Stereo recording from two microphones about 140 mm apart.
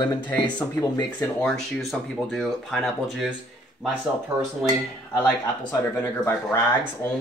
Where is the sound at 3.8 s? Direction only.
10° left (ahead or behind).